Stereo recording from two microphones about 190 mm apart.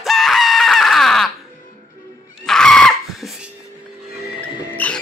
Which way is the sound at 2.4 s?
Centre (ahead or behind).